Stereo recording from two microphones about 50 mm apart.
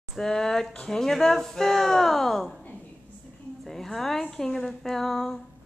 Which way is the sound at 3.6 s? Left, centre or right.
Centre.